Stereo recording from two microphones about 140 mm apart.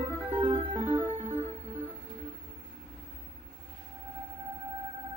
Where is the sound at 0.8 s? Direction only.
15° right (ahead or behind).